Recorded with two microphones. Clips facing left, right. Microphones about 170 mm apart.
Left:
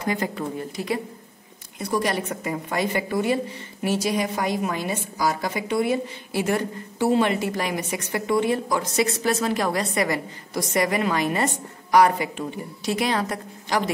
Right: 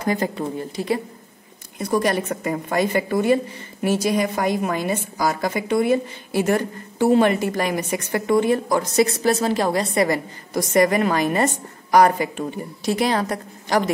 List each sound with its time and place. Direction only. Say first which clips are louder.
0.0 s speech: right 3 dB; 40° right (ahead or behind)
1.8 s a woman's voice: right 4 dB; 45° right (ahead or behind)